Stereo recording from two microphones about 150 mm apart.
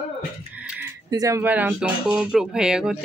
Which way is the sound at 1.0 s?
25° right (ahead or behind).